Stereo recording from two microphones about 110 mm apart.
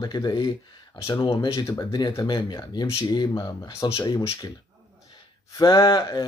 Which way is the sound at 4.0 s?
35° left (ahead or behind).